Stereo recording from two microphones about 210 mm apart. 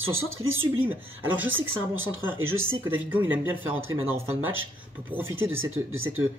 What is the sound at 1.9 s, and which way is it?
Speech, 70° right (ahead or behind).